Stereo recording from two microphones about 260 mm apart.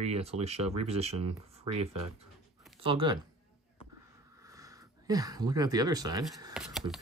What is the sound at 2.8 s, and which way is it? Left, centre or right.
Speech, centre.